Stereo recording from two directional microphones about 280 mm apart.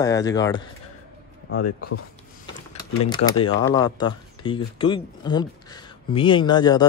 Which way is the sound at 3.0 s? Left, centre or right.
Centre.